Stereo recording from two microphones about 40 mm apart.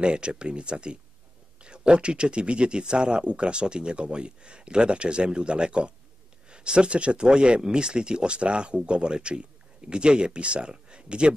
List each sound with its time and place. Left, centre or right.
0.0 s speech: right